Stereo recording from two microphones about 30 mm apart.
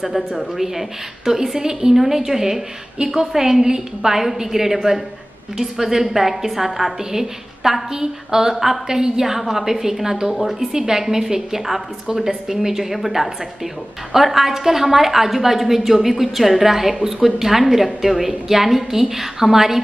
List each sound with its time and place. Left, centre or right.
0.0 s a woman's voice: centre
10.3 s a woman's voice: centre
10.7 s a woman's voice: centre